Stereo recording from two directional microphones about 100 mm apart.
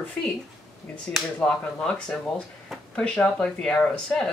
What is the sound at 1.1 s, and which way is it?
Speech, 10° left (ahead or behind).